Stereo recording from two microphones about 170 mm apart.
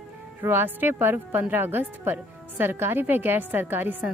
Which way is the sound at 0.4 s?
15° right (ahead or behind).